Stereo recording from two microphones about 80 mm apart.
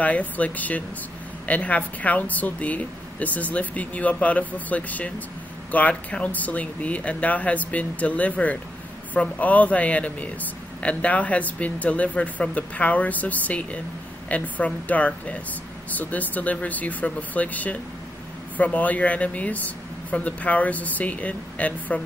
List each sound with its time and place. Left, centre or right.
0.0 s speech: centre